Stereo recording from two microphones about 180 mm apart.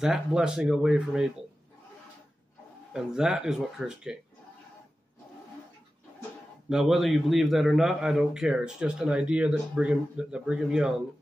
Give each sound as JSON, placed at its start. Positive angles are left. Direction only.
{"t": 0.0, "sound": "a man's voice", "side_deg": -5}
{"t": 2.9, "sound": "a man's voice", "side_deg": -5}
{"t": 6.7, "sound": "a man's voice", "side_deg": 0}